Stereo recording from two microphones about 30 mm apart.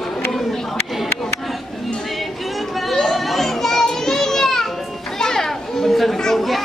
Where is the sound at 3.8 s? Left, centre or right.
Centre.